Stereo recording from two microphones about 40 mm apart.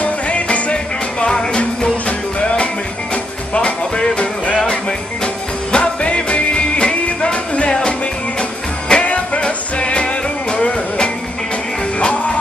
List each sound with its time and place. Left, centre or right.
0.0 s music: left
9.0 s music: left